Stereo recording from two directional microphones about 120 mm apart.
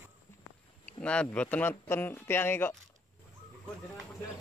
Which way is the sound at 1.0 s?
10° left (ahead or behind).